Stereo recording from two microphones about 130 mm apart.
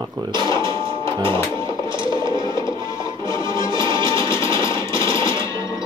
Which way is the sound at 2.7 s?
25° left (ahead or behind).